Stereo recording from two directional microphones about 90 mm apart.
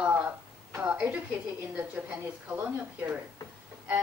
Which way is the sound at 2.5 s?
20° right (ahead or behind).